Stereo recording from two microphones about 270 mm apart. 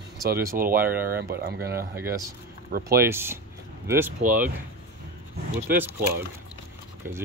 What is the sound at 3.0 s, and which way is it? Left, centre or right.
Speech, centre.